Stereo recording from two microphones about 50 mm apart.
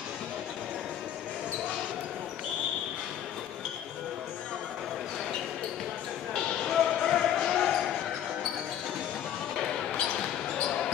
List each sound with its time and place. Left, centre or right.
6.6 s basketball bounce: centre
9.6 s basketball bounce: centre